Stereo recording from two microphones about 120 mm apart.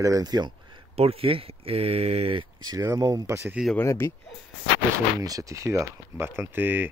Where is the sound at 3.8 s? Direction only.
20° left (ahead or behind).